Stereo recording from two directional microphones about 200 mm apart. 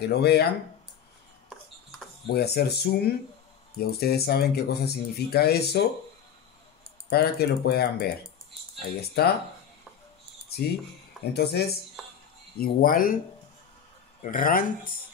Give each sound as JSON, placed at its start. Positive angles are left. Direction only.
{"t": 0.0, "sound": "speech", "side_deg": 55}
{"t": 2.2, "sound": "speech", "side_deg": 50}
{"t": 7.1, "sound": "speech", "side_deg": 55}
{"t": 11.3, "sound": "speech", "side_deg": 55}
{"t": 14.2, "sound": "speech", "side_deg": 45}